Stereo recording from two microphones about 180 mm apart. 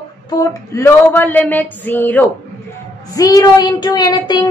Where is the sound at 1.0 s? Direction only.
10° left (ahead or behind).